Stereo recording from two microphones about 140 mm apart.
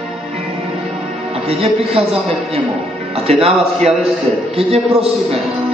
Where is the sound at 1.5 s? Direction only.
45° right (ahead or behind).